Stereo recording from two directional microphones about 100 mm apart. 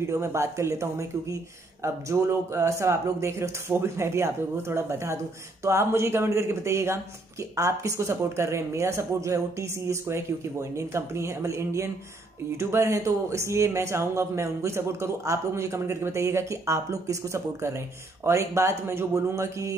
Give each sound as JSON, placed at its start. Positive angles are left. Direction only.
{"t": 0.0, "sound": "speech", "side_deg": -30}